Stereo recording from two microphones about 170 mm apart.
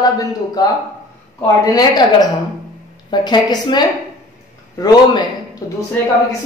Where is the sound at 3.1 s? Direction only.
25° left (ahead or behind).